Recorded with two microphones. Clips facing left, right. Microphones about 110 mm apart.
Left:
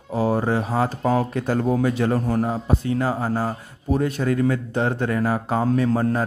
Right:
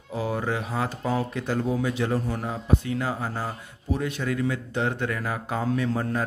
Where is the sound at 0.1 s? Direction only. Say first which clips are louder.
Left 7 dB; 40° left (ahead or behind).